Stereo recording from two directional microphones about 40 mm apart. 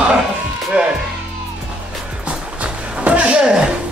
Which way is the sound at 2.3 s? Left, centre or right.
Right.